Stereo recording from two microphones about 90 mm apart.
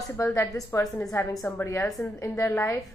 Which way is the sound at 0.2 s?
35° left (ahead or behind).